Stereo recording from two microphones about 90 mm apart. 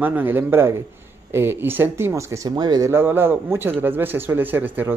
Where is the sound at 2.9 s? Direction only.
25° right (ahead or behind).